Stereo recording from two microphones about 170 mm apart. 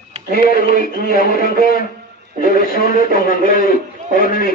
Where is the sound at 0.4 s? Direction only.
55° left (ahead or behind).